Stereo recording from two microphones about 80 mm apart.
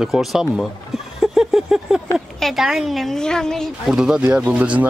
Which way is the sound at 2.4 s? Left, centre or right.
Centre.